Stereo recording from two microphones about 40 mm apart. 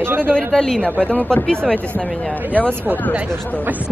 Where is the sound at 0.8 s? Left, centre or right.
Left.